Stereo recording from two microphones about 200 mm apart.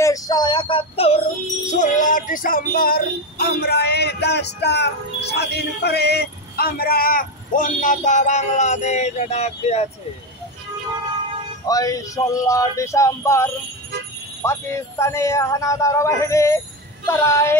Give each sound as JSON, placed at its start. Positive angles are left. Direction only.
{"t": 0.0, "sound": "speech", "side_deg": 20}
{"t": 1.7, "sound": "music", "side_deg": 40}
{"t": 11.6, "sound": "speech", "side_deg": 15}